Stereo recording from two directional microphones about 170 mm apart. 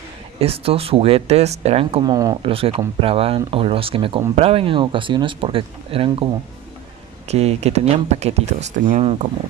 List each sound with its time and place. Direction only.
0.4 s speech: 35° right (ahead or behind)
2.1 s speech: 20° right (ahead or behind)
2.5 s speech: 35° right (ahead or behind)
7.2 s speech: 40° right (ahead or behind)